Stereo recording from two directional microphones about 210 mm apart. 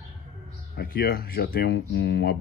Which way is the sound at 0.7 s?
45° left (ahead or behind).